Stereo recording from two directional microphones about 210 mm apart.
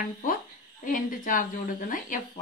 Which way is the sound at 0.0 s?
40° left (ahead or behind).